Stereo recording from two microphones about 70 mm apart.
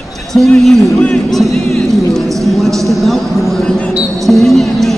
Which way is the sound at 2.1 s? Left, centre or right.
Centre.